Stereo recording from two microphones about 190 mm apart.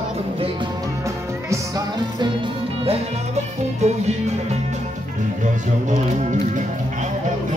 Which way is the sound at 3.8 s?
35° right (ahead or behind).